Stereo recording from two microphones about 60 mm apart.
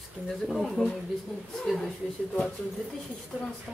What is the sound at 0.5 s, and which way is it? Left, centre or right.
Speech, centre.